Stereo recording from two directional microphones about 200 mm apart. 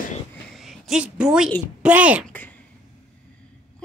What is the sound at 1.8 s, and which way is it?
Speech, 5° right (ahead or behind).